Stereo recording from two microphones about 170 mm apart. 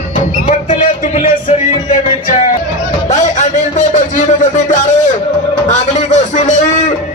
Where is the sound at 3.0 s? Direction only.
45° left (ahead or behind).